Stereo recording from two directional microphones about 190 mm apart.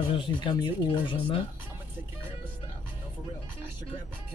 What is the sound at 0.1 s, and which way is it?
Speech, 25° left (ahead or behind).